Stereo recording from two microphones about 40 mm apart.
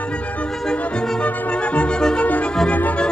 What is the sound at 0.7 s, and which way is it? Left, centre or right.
Music, centre.